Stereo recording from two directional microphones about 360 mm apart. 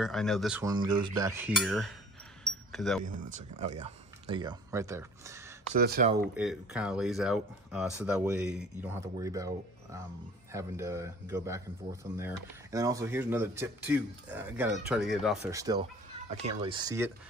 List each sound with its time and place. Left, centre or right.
0.0 s speech: centre
2.4 s a sound: centre
3.1 s speech: right
5.8 s speech: right
6.3 s speech: centre